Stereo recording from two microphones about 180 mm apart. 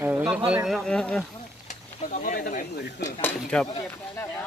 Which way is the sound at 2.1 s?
45° left (ahead or behind).